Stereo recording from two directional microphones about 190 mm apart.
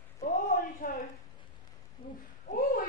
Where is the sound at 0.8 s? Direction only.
45° left (ahead or behind).